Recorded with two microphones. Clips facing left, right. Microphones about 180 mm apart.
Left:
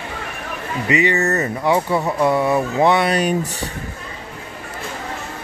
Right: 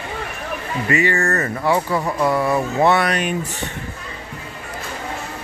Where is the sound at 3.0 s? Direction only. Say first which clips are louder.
Left 3 dB; 35° left (ahead or behind).